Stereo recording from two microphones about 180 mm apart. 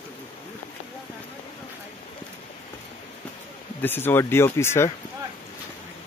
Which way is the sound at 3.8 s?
10° left (ahead or behind).